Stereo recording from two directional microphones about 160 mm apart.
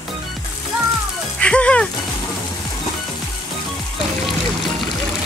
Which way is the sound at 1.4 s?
5° left (ahead or behind).